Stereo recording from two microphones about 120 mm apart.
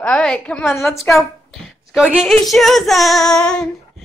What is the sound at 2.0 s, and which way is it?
Speech, 5° right (ahead or behind).